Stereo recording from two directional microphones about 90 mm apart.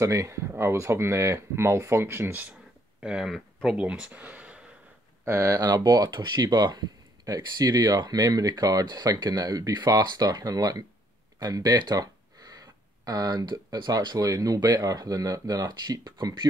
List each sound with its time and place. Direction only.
0.0 s speech: 35° right (ahead or behind)
3.0 s speech: 10° right (ahead or behind)
3.8 s speech: 15° right (ahead or behind)
5.2 s speech: 30° right (ahead or behind)
5.7 s speech: 50° right (ahead or behind)